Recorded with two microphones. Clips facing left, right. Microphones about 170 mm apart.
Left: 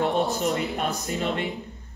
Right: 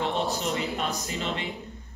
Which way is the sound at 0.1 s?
55° left (ahead or behind).